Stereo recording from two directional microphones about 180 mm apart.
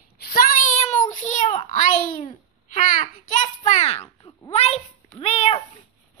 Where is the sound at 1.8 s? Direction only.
45° left (ahead or behind).